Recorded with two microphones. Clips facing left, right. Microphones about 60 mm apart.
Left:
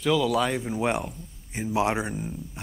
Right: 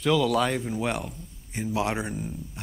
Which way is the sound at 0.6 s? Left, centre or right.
Centre.